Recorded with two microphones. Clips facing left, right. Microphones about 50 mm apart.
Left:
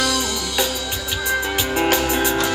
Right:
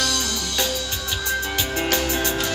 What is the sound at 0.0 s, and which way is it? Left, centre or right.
Music, centre.